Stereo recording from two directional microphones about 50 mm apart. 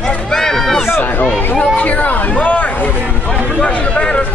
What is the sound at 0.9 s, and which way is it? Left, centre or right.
Speech, left.